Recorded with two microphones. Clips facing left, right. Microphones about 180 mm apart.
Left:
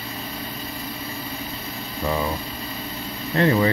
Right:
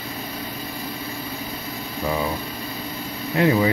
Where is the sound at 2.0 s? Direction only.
10° right (ahead or behind).